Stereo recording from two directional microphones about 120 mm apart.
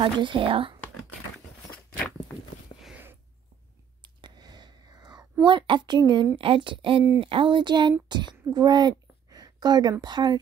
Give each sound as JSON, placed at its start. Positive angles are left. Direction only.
{"t": 0.0, "sound": "speech", "side_deg": -45}
{"t": 4.0, "sound": "whispering", "side_deg": -35}
{"t": 5.4, "sound": "a woman's voice", "side_deg": -40}